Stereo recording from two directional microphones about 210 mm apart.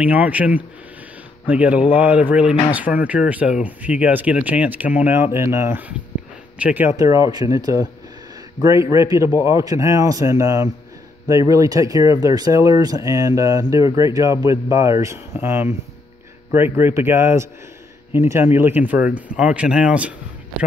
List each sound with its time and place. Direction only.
0.0 s speech: 5° right (ahead or behind)